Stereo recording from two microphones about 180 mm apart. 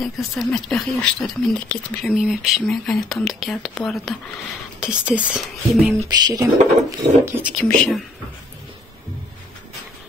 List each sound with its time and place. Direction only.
0.0 s speech: centre (ahead or behind)
6.0 s speech: 20° right (ahead or behind)
7.5 s speech: 5° left (ahead or behind)